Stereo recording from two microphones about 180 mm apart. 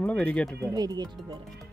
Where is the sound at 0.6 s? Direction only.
20° right (ahead or behind).